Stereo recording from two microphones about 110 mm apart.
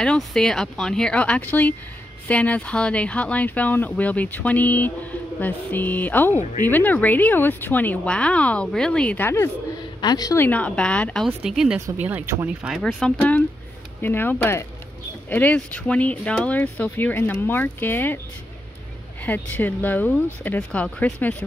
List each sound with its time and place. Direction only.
0.0 s speech: 5° left (ahead or behind)
10.0 s a woman's voice: 35° left (ahead or behind)
10.3 s speech: 15° left (ahead or behind); by 11.8 s 5° right (ahead or behind)
12.0 s speech: 15° right (ahead or behind)
12.6 s speech: centre (ahead or behind); by 18.2 s 20° left (ahead or behind)
19.2 s speech: 15° left (ahead or behind)